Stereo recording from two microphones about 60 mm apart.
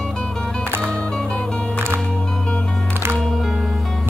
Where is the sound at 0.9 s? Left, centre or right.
Centre.